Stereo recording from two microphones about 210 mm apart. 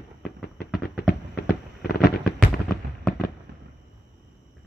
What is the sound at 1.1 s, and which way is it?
Fireworks, 45° left (ahead or behind).